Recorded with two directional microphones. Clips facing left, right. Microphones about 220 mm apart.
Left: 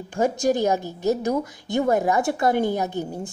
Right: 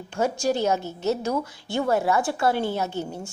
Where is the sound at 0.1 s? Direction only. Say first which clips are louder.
Left 3 dB; 15° left (ahead or behind).